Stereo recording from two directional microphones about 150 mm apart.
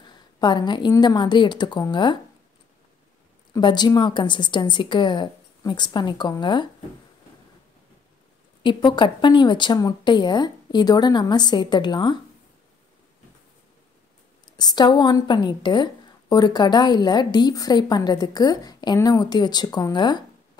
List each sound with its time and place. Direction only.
0.0 s a woman's voice: 30° left (ahead or behind)
3.5 s a woman's voice: 30° left (ahead or behind)
8.6 s a woman's voice: 30° left (ahead or behind)
14.4 s a woman's voice: 30° left (ahead or behind)